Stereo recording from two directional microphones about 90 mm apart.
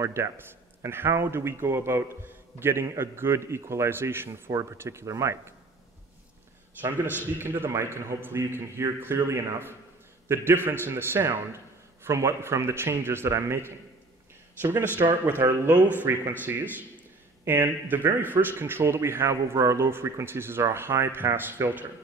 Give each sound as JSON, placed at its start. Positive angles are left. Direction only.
{"t": 0.0, "sound": "a man's voice", "side_deg": -30}
{"t": 7.3, "sound": "a man's voice", "side_deg": -25}